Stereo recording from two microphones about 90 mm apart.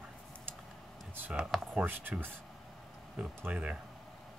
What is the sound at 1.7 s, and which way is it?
Speech, 20° right (ahead or behind).